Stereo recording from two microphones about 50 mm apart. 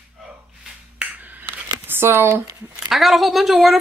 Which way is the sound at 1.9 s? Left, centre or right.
Right.